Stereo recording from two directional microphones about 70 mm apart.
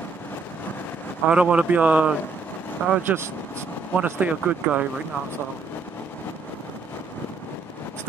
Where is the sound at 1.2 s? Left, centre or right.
Centre.